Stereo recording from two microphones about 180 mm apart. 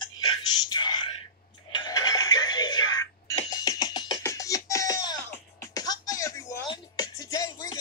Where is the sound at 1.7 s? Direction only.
25° left (ahead or behind).